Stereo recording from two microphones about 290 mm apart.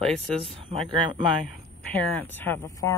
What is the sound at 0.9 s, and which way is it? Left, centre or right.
Speech, centre.